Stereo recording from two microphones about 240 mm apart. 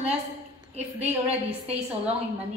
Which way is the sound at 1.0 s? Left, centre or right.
Centre.